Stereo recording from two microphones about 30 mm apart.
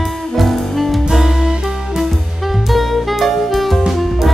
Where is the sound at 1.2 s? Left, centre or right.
Centre.